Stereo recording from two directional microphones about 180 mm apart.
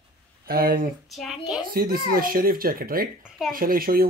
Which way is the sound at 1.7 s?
55° right (ahead or behind).